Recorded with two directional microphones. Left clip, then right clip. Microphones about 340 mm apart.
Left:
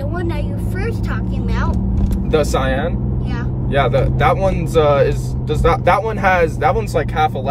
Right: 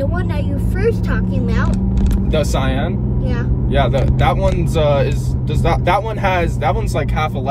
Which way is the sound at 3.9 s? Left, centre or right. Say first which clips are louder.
Left 2 dB; centre.